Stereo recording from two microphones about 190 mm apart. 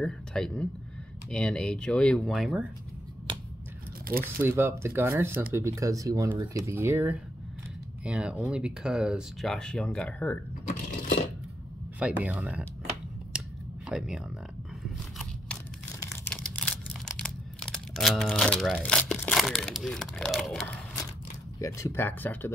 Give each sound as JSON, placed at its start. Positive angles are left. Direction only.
{"t": 0.0, "sound": "speech", "side_deg": 5}
{"t": 4.4, "sound": "speech", "side_deg": -10}
{"t": 12.0, "sound": "speech", "side_deg": -5}
{"t": 13.3, "sound": "a sound", "side_deg": -5}
{"t": 13.8, "sound": "speech", "side_deg": -5}
{"t": 16.0, "sound": "crumpling", "side_deg": 15}
{"t": 16.3, "sound": "a sound", "side_deg": 5}
{"t": 21.5, "sound": "speech", "side_deg": 15}